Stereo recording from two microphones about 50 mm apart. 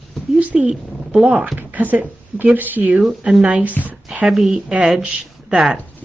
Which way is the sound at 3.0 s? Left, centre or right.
Centre.